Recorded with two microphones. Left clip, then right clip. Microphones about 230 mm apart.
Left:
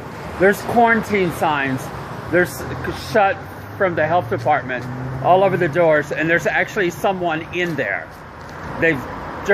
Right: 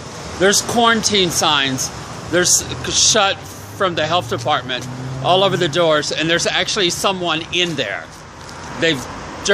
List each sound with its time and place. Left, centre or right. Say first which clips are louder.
0.4 s speech: even; centre
2.3 s speech: right 2 dB; centre